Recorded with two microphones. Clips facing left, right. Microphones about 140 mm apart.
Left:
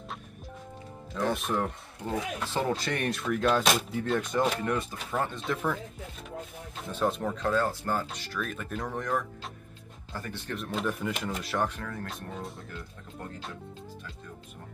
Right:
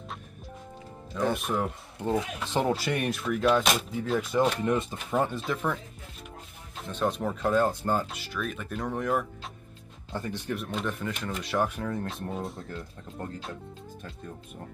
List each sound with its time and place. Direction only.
1.1 s speech: centre (ahead or behind)
4.6 s speech: 20° right (ahead or behind)
5.4 s speech: centre (ahead or behind)
6.8 s speech: 5° left (ahead or behind)
7.4 s speech: 20° right (ahead or behind)
8.1 s speech: 5° right (ahead or behind)
10.1 s speech: 20° right (ahead or behind)
10.5 s speech: centre (ahead or behind)
11.6 s speech: 15° right (ahead or behind)
12.4 s speech: centre (ahead or behind)